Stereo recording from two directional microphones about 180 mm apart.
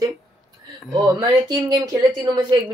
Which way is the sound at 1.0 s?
20° right (ahead or behind).